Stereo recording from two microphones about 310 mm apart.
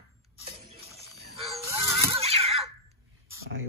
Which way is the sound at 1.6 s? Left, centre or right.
Centre.